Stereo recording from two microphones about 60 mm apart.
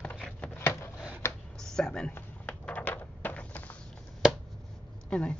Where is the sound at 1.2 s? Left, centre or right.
Left.